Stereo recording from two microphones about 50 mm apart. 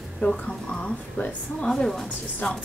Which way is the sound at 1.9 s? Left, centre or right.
Centre.